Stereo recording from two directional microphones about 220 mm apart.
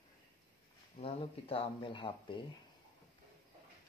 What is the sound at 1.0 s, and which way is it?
Speech, 25° left (ahead or behind).